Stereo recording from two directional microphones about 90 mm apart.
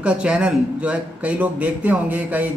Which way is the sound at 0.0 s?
10° right (ahead or behind).